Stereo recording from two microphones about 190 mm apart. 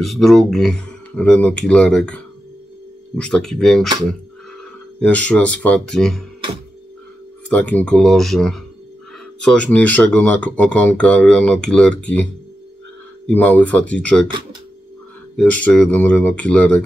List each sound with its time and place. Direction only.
0.0 s speech: centre (ahead or behind)
5.0 s speech: 5° left (ahead or behind)
7.4 s speech: 5° left (ahead or behind)
13.3 s speech: 5° left (ahead or behind)
15.3 s speech: 5° left (ahead or behind)